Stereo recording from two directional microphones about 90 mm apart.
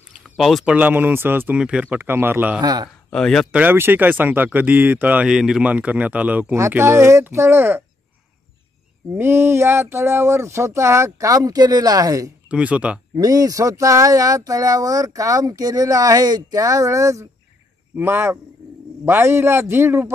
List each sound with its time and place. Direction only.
0.2 s a sound: centre (ahead or behind)
0.7 s speech: 15° right (ahead or behind)
1.6 s speech: 10° right (ahead or behind)
2.0 s speech: 25° right (ahead or behind)
2.6 s speech: 50° right (ahead or behind)
3.1 s speech: 5° left (ahead or behind)
3.5 s speech: 20° right (ahead or behind)
5.3 s speech: 5° right (ahead or behind)
5.7 s speech: 15° right (ahead or behind)
6.7 s speech: 25° right (ahead or behind)
9.1 s speech: 25° right (ahead or behind); by 12.3 s 45° right (ahead or behind)
12.4 s speech: 15° right (ahead or behind)
13.1 s speech: 40° right (ahead or behind)
17.9 s speech: 25° right (ahead or behind)